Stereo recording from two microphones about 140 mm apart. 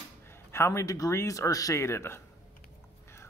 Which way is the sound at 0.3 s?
20° left (ahead or behind).